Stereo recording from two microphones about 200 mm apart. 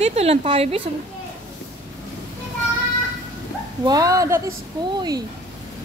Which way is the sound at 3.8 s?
20° right (ahead or behind).